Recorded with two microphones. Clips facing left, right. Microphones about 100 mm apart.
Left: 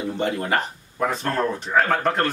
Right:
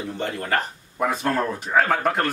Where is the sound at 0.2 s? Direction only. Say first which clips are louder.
Left 2 dB; 15° left (ahead or behind).